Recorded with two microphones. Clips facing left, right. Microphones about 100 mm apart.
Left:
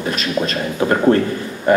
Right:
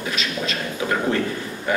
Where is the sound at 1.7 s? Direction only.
45° left (ahead or behind).